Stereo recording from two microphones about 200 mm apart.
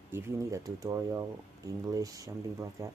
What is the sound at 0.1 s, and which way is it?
Speech, 15° right (ahead or behind).